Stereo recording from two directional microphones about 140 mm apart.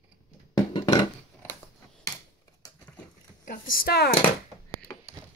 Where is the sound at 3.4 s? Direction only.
90° left.